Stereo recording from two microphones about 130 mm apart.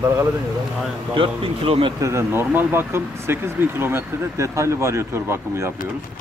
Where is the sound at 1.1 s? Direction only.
45° right (ahead or behind).